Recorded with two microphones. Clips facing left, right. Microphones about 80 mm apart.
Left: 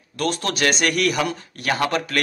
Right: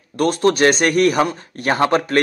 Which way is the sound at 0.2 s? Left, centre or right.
Right.